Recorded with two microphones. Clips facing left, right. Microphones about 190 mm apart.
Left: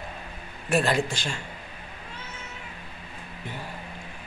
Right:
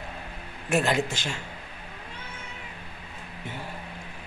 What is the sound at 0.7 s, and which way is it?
Speech, 20° right (ahead or behind).